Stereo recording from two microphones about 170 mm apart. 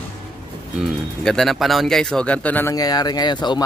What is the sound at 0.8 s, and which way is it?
Speech, 5° left (ahead or behind).